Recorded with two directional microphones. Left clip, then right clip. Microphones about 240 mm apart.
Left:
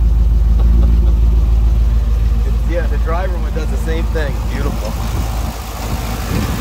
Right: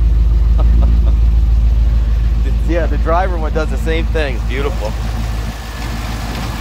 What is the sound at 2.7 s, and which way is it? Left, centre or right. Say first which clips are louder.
Vehicle: right 6 dB; centre.